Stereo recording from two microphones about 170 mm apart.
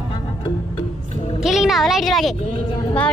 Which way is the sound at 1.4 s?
Centre (ahead or behind).